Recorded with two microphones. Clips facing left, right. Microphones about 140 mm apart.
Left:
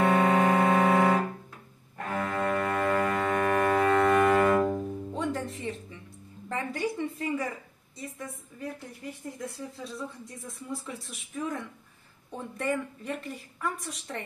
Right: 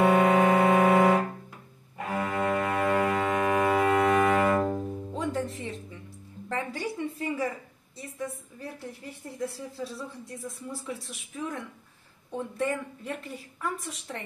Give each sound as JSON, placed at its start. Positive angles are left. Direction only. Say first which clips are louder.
{"t": 0.0, "sound": "music", "louder": "right 2 dB", "side_deg": -10}
{"t": 6.5, "sound": "speech", "louder": "left 1 dB", "side_deg": 0}
{"t": 9.4, "sound": "speech", "louder": "right 9 dB", "side_deg": -5}